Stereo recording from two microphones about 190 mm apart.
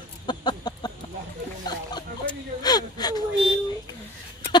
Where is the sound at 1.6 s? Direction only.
20° left (ahead or behind).